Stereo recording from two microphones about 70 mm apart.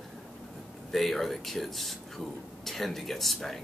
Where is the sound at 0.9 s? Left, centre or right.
Centre.